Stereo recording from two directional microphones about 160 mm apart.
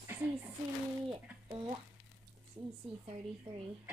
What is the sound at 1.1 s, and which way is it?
Speech, 30° right (ahead or behind).